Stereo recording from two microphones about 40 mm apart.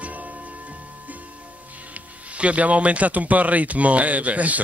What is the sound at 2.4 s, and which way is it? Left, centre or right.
Speech, right.